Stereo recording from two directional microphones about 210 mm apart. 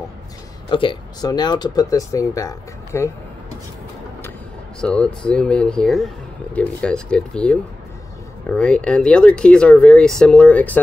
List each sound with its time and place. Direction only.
0.7 s speech: 25° left (ahead or behind)
4.7 s speech: 5° left (ahead or behind)